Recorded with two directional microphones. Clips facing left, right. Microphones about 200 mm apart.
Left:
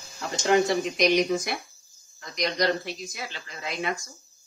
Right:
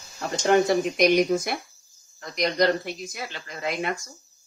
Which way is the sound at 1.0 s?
55° right (ahead or behind).